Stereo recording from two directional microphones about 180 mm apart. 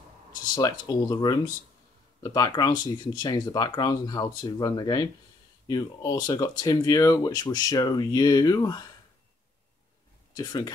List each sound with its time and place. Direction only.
0.6 s speech: 20° left (ahead or behind)
10.3 s speech: 20° left (ahead or behind)